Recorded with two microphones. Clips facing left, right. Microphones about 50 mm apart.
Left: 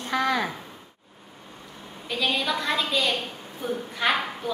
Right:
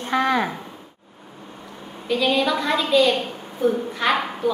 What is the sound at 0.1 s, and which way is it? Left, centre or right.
Speech, right.